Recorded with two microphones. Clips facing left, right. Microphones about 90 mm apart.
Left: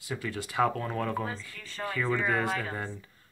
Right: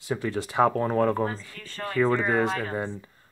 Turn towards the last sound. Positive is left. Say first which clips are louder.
# right 5 dB
turn(degrees=-20)  # may be behind; listen again after turning